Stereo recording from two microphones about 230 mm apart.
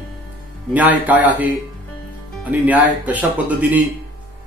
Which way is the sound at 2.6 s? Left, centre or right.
Centre.